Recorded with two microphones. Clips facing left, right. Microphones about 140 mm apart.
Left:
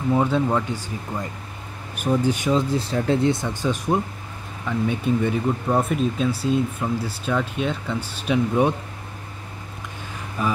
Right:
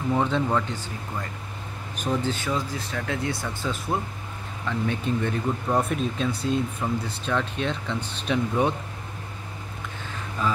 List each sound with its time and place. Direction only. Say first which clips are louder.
0.1 s speech: left 3 dB; 10° left (ahead or behind)
10.4 s speech: left 2 dB; 15° left (ahead or behind)